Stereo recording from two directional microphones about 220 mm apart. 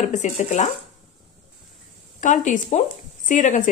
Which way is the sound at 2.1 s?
35° left (ahead or behind).